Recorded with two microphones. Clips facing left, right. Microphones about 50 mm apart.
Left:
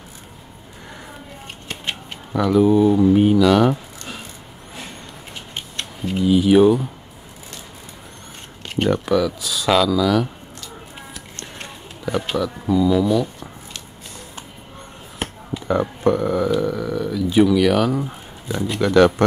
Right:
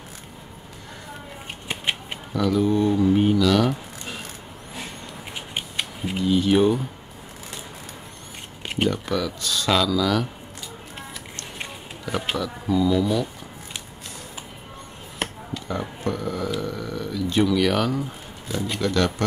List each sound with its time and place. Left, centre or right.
1.7 s typewriter: centre
2.3 s speech: centre
5.3 s a sound: centre
6.2 s speech: centre
8.8 s speech: centre
12.1 s speech: centre
15.7 s speech: left
16.2 s a sound: centre
18.8 s speech: left